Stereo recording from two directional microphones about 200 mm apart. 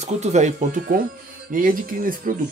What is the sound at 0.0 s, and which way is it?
Speech, 35° right (ahead or behind).